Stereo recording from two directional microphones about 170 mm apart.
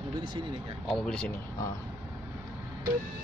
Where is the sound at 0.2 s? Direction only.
25° right (ahead or behind).